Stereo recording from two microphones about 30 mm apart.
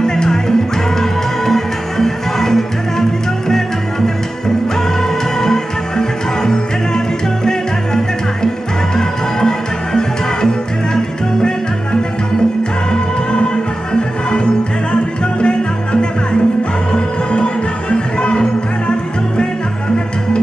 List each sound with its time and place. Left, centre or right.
0.0 s music: left
5.4 s music: centre
17.3 s music: left